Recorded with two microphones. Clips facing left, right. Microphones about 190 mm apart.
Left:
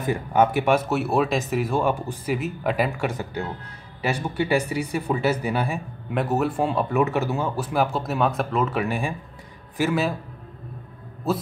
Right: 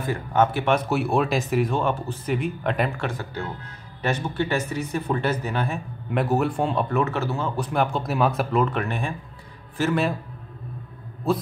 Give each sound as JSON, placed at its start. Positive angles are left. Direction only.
{"t": 0.0, "sound": "speech", "side_deg": 15}
{"t": 3.1, "sound": "speech", "side_deg": 15}